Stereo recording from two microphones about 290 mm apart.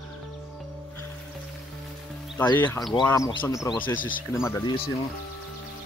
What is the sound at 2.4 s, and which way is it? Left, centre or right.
Speech, centre.